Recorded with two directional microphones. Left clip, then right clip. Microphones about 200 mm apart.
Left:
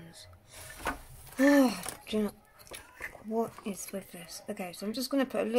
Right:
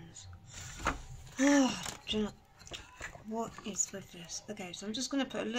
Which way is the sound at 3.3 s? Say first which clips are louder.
Left 6 dB; 35° left (ahead or behind).